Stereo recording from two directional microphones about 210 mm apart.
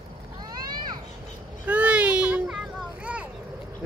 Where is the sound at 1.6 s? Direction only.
5° right (ahead or behind).